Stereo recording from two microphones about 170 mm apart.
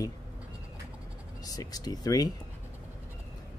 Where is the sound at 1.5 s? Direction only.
20° left (ahead or behind).